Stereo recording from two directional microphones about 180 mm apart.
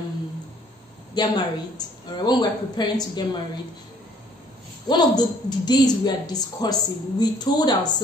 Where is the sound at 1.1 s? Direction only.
20° left (ahead or behind).